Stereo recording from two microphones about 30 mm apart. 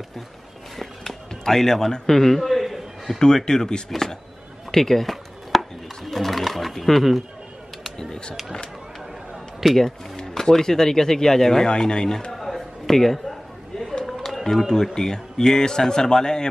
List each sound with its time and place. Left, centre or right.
0.7 s speech: centre
2.4 s a sound: centre
3.4 s speech: left
5.1 s chopping: centre
6.0 s pigeon: centre
9.6 s speech: centre
10.1 s speech: centre
12.3 s a sound: centre
14.0 s run: centre
14.6 s speech: centre